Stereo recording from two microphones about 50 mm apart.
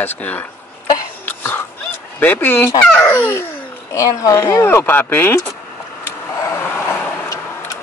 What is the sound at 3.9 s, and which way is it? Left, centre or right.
Speech, left.